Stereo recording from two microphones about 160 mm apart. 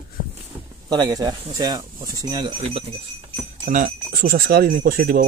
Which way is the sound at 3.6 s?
55° right (ahead or behind).